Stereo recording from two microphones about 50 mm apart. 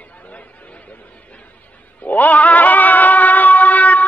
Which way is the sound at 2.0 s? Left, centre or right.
Left.